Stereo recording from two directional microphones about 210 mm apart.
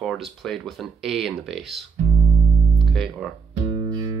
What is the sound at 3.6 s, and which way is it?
Music, 20° right (ahead or behind).